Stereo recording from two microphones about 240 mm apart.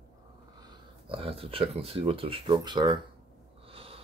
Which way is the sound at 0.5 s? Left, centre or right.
Centre.